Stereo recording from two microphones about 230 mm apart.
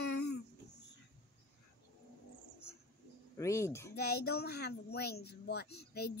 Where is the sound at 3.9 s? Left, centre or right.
Left.